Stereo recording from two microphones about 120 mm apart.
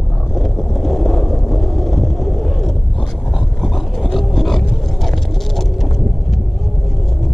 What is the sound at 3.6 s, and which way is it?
Roaring cats, centre (ahead or behind).